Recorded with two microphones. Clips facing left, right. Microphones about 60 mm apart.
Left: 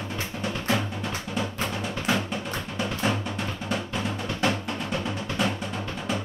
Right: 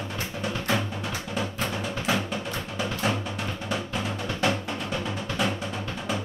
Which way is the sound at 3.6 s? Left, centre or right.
Centre.